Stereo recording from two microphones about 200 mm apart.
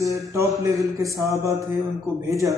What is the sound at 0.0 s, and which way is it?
Speech, 15° right (ahead or behind).